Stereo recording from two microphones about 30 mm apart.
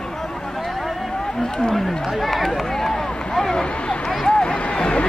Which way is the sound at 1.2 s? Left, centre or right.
Centre.